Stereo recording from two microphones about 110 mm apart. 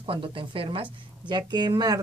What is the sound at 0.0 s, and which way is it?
A woman's voice, 55° right (ahead or behind).